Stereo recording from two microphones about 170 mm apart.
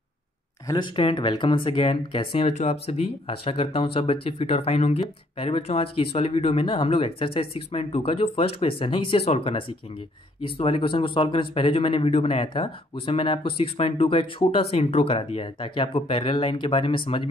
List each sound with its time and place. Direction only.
0.7 s speech: 25° left (ahead or behind)